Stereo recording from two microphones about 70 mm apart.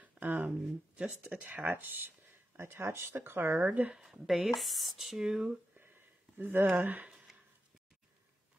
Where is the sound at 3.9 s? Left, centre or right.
Centre.